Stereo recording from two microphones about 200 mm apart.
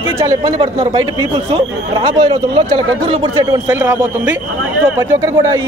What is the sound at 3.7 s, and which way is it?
Speech, 5° right (ahead or behind).